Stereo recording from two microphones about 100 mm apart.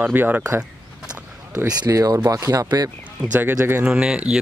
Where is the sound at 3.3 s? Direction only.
20° right (ahead or behind).